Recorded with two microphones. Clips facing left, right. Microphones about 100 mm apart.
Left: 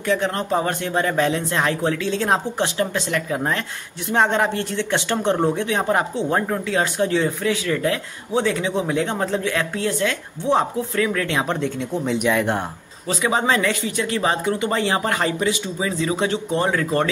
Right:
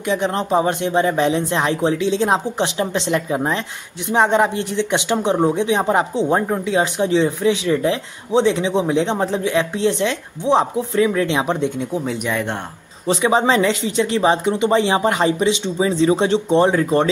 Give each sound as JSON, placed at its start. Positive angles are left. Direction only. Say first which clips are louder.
{"t": 0.1, "sound": "speech", "louder": "right 3 dB", "side_deg": -15}
{"t": 11.9, "sound": "speech", "louder": "left 2 dB", "side_deg": 0}
{"t": 13.1, "sound": "speech", "louder": "right 4 dB", "side_deg": -25}